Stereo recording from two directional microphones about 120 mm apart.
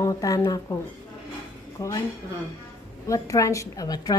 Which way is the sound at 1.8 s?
30° left (ahead or behind).